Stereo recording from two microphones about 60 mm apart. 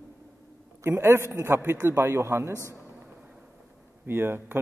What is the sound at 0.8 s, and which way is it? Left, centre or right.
A man's voice, right.